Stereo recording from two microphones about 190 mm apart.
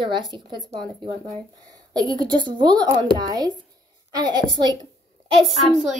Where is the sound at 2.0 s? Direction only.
20° right (ahead or behind).